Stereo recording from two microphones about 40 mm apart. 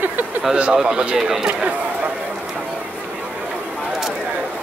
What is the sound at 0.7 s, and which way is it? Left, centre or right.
Speech, centre.